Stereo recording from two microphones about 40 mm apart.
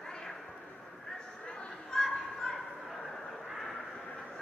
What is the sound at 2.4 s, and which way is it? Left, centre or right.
Bow-wow, left.